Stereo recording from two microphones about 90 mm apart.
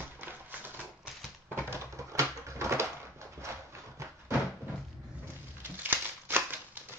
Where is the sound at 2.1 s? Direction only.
30° right (ahead or behind).